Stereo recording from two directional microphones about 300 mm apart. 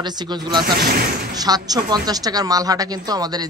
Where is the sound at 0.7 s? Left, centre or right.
Right.